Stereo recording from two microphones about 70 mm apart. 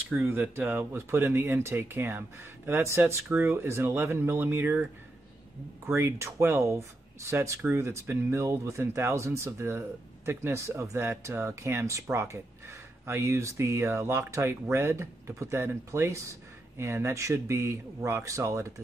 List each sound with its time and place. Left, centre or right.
0.1 s speech: right
5.9 s speech: right